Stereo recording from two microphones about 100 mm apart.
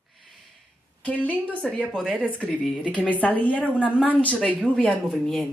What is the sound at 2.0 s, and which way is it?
Speech, centre (ahead or behind).